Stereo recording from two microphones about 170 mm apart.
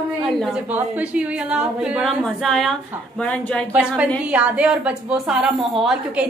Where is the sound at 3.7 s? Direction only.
5° right (ahead or behind).